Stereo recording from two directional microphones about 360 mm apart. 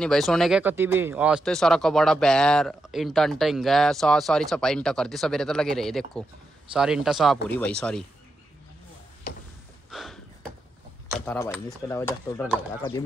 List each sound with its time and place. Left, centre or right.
0.0 s speech: centre
9.3 s a sound: left
9.8 s snort: centre
11.1 s speech: centre